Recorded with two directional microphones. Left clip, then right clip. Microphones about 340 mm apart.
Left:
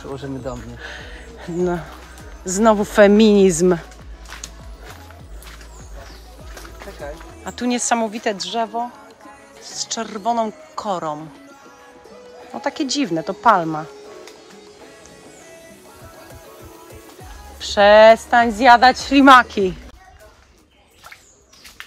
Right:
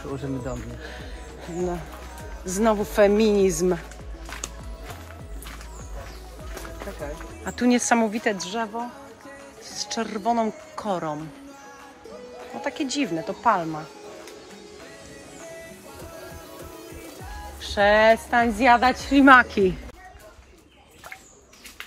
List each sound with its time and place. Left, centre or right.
0.1 s speech: left
2.4 s speech: centre
7.4 s a woman's voice: centre
12.6 s a woman's voice: centre
17.6 s a woman's voice: centre